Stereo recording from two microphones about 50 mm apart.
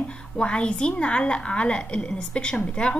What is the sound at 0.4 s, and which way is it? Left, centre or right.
A woman's voice, centre.